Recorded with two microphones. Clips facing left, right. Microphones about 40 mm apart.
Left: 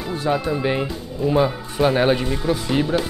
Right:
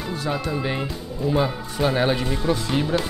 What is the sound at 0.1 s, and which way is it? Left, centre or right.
Speech, centre.